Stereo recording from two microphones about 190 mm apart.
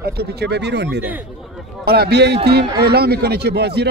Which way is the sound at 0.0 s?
55° right (ahead or behind).